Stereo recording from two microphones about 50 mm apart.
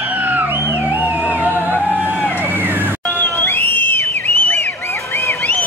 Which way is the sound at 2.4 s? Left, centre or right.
Right.